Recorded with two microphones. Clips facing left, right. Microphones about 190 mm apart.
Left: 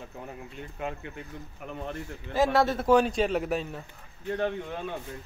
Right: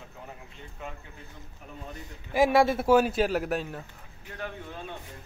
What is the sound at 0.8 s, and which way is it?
Speech, 70° left (ahead or behind).